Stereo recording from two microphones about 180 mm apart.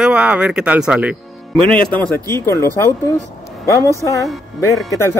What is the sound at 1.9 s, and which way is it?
Speech, 10° left (ahead or behind).